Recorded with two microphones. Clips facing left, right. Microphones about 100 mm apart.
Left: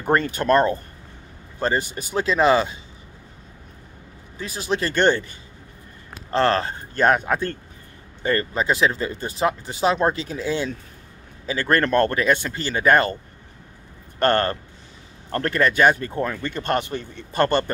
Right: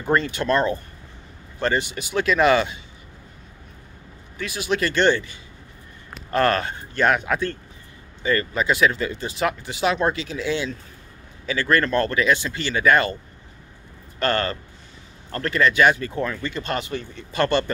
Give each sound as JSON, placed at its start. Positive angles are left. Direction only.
{"t": 0.0, "sound": "speech", "side_deg": 50}
{"t": 4.4, "sound": "speech", "side_deg": 35}
{"t": 4.9, "sound": "speech", "side_deg": 45}
{"t": 6.3, "sound": "speech", "side_deg": 25}
{"t": 14.2, "sound": "speech", "side_deg": 50}
{"t": 17.3, "sound": "speech", "side_deg": 45}